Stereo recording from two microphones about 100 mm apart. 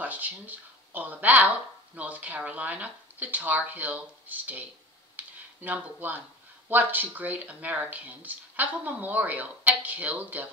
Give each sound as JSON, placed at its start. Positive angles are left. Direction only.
{"t": 0.0, "sound": "speech", "side_deg": -15}
{"t": 5.1, "sound": "a sound", "side_deg": -15}
{"t": 6.7, "sound": "speech", "side_deg": -20}